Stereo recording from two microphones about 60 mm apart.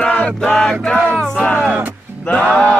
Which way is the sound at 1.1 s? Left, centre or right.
Left.